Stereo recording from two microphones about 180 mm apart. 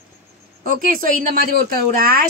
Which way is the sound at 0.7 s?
50° right (ahead or behind).